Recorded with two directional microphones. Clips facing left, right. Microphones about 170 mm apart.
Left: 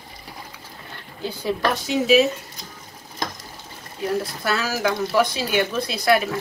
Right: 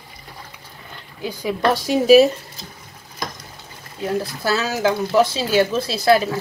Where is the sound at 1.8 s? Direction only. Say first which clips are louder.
Right 6 dB; 40° right (ahead or behind).